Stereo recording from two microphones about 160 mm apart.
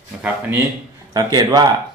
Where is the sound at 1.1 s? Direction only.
25° right (ahead or behind).